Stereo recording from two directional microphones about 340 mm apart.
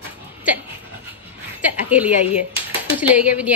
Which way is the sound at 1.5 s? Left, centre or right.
Centre.